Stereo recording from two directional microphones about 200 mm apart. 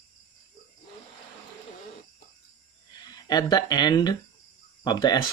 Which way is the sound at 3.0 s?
20° left (ahead or behind).